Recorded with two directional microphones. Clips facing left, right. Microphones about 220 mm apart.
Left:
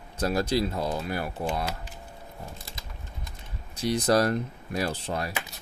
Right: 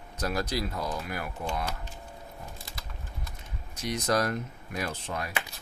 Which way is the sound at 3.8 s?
30° left (ahead or behind).